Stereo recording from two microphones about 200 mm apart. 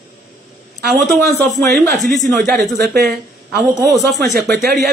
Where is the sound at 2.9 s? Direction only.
50° right (ahead or behind).